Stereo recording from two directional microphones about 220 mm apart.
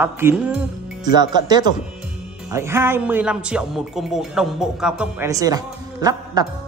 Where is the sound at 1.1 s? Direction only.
20° right (ahead or behind).